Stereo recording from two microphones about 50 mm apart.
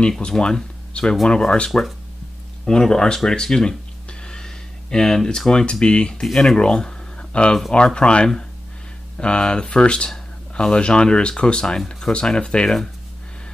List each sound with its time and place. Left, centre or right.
0.4 s speech: centre
1.7 s speech: centre
6.2 s speech: centre